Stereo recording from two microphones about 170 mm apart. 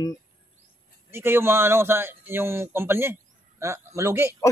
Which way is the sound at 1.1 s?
15° right (ahead or behind).